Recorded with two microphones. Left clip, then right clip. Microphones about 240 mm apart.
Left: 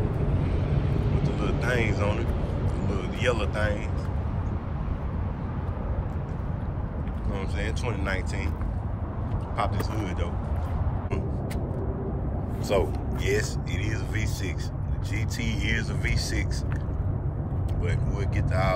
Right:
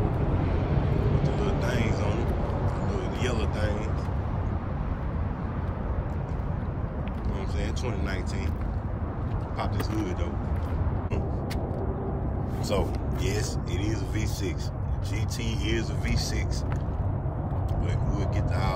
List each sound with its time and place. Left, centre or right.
0.4 s vehicle: left
1.2 s vehicle: centre
9.6 s speech: centre
12.6 s speech: centre
15.4 s speech: centre